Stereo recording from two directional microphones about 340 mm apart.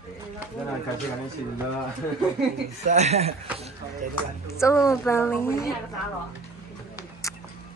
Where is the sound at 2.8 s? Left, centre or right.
Centre.